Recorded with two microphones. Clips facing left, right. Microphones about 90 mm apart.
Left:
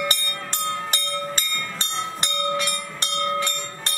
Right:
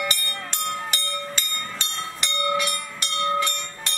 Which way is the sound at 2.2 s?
45° left (ahead or behind).